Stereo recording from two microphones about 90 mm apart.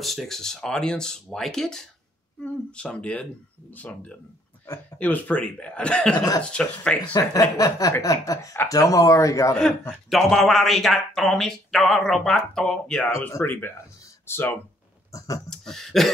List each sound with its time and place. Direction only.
0.0 s a man's voice: centre (ahead or behind)
6.1 s speech: 45° left (ahead or behind)
6.4 s speech: 10° left (ahead or behind)
7.2 s speech: 40° left (ahead or behind)
9.6 s a man's voice: 10° left (ahead or behind)
13.3 s speech: 30° left (ahead or behind)
15.1 s speech: 40° left (ahead or behind)
15.5 s a man's voice: 5° left (ahead or behind)